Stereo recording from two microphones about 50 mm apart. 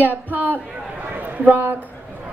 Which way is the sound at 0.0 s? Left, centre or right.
Right.